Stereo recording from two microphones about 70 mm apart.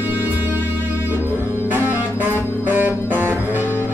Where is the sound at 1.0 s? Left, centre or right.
Right.